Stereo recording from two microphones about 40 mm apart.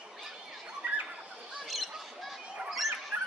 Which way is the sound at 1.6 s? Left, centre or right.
Centre.